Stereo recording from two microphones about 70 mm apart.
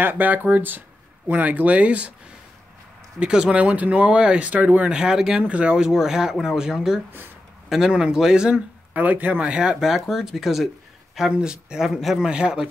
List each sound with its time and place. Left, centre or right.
0.0 s speech: right
3.2 s speech: centre
8.9 s speech: right
9.4 s speech: centre